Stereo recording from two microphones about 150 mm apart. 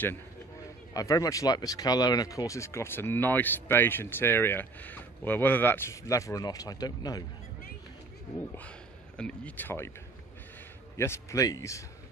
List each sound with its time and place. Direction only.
0.9 s speech: 25° left (ahead or behind)
8.6 s speech: 5° left (ahead or behind)
11.0 s speech: 20° left (ahead or behind)